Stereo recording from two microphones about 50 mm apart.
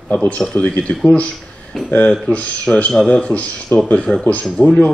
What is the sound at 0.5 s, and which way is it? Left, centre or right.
Speech, left.